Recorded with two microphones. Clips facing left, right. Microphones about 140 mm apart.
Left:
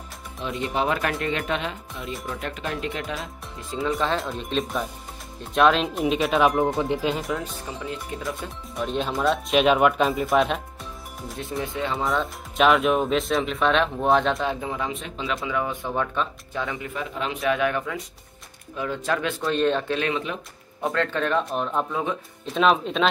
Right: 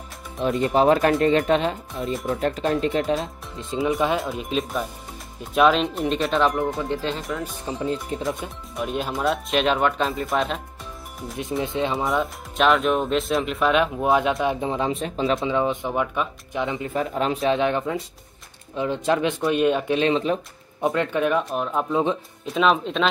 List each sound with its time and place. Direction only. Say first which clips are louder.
0.4 s speech: right 7 dB; 45° right (ahead or behind)
3.7 s speech: right 4 dB; 20° right (ahead or behind)
4.2 s speech: right 1 dB; 5° right (ahead or behind)
7.7 s speech: right 9 dB; 25° right (ahead or behind)
8.7 s speech: even; 5° right (ahead or behind)
11.6 s speech: right 4 dB; 20° right (ahead or behind)
12.0 s speech: right 2 dB; centre (ahead or behind)
14.6 s speech: right 5 dB; 25° right (ahead or behind)
15.4 s speech: right 4 dB; 25° right (ahead or behind)
16.9 s speech: right 6 dB; 40° right (ahead or behind)
17.4 s speech: even; 25° right (ahead or behind)
20.8 s speech: right 3 dB; 15° right (ahead or behind)
21.9 s speech: right 5 dB; 25° right (ahead or behind)
22.5 s speech: even; centre (ahead or behind)